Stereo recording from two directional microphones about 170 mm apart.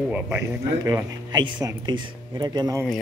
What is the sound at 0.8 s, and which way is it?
Speech, 25° right (ahead or behind).